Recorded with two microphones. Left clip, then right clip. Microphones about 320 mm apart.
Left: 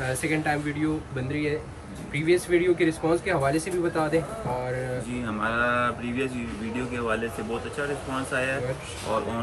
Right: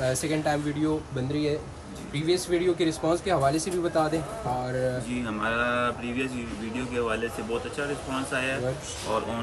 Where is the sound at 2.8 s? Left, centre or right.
Centre.